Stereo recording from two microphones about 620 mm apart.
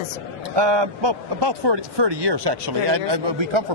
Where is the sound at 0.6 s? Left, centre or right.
Right.